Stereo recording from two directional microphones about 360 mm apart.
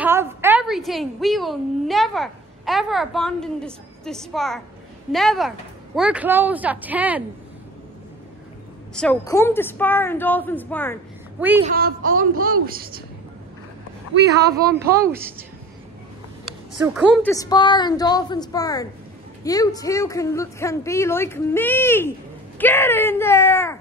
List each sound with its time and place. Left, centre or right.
0.0 s a woman's voice: centre
8.9 s a woman's voice: centre
11.7 s speech: right
15.0 s a woman's voice: centre
16.7 s a woman's voice: centre
17.3 s speech: centre